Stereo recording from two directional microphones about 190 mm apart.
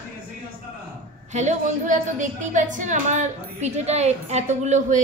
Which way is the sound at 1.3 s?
40° right (ahead or behind).